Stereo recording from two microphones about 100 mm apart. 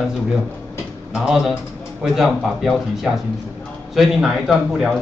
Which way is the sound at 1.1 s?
5° right (ahead or behind).